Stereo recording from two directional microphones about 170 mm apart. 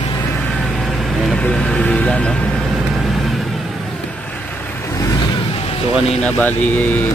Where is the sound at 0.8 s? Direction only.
Centre (ahead or behind).